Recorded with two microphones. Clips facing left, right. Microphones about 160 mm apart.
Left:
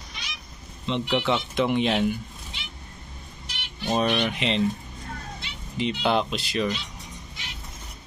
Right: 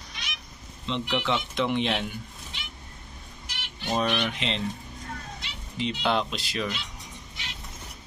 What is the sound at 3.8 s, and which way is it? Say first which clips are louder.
Speech: left 3 dB; 15° left (ahead or behind).